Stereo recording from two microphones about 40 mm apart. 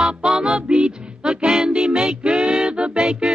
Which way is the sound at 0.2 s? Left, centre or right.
Right.